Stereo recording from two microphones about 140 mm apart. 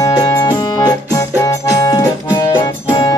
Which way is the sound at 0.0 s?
25° left (ahead or behind).